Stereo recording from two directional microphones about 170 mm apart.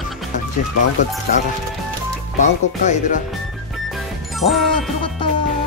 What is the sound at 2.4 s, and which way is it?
Speech, 45° left (ahead or behind).